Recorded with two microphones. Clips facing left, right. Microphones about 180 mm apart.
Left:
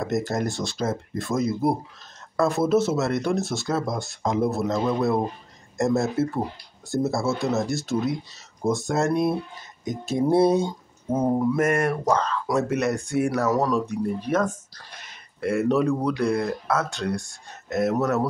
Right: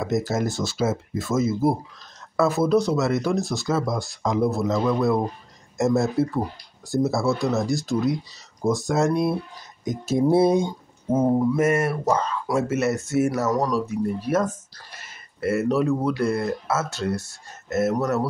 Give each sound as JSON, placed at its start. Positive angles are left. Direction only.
{"t": 0.0, "sound": "speech", "side_deg": -5}
{"t": 4.7, "sound": "a man's voice", "side_deg": 20}
{"t": 5.8, "sound": "speech", "side_deg": 0}